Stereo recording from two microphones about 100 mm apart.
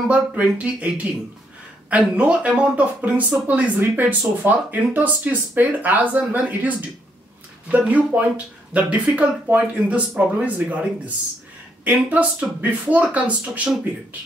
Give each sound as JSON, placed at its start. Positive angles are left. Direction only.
{"t": 0.1, "sound": "speech", "side_deg": -15}
{"t": 11.8, "sound": "speech", "side_deg": -15}